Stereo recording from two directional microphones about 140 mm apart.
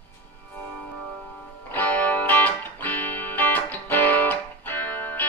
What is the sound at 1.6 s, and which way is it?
Music, 15° left (ahead or behind).